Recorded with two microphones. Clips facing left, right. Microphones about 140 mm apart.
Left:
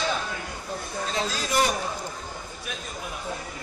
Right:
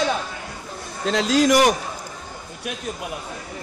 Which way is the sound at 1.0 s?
85° right.